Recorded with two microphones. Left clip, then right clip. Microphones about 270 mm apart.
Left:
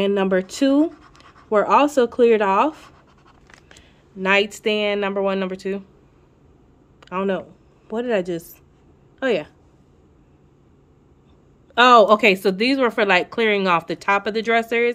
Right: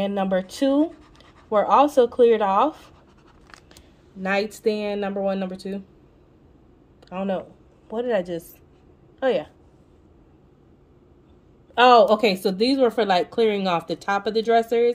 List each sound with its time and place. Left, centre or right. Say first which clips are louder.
0.0 s speech: left 4 dB; centre
0.8 s scratch: left 4 dB; centre
1.9 s speech: left 1 dB; centre
4.2 s speech: left 5 dB; centre
7.0 s speech: left 4 dB; centre
11.7 s speech: left 2 dB; centre